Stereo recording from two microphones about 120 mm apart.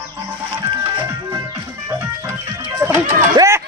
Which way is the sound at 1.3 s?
25° right (ahead or behind).